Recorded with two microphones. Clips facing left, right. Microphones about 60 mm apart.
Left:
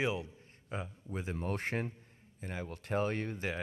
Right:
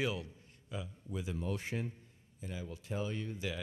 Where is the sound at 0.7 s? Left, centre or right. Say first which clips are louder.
Left 2 dB; left.